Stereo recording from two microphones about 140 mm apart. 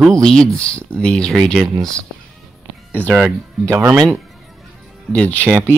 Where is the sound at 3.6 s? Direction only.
20° right (ahead or behind).